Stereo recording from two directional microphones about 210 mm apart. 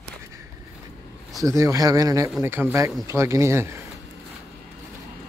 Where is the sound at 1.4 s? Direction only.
15° right (ahead or behind).